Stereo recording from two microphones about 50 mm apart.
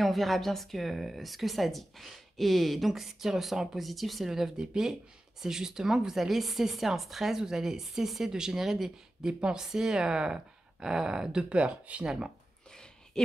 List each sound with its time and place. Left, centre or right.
0.0 s speech: centre
9.3 s speech: centre
12.7 s a sound: centre